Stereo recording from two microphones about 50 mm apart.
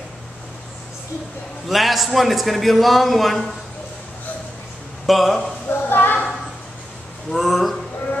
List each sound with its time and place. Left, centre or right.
1.7 s a man's voice: centre
5.0 s a man's voice: centre
5.7 s a sound: left
7.2 s a man's voice: centre